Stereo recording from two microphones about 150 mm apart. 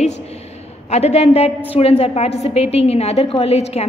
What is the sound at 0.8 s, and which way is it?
A woman's voice, 45° left (ahead or behind).